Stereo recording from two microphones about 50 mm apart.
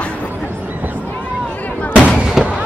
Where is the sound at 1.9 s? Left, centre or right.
Left.